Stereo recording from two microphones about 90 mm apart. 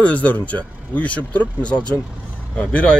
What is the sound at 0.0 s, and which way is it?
Speech, 15° left (ahead or behind).